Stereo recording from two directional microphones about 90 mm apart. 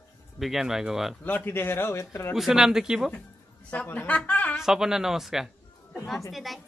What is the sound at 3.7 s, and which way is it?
Speech, 20° left (ahead or behind).